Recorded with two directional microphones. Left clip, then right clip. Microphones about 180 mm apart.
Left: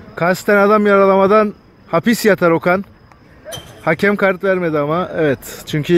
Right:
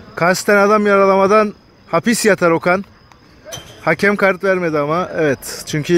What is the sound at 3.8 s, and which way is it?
Speech, centre (ahead or behind).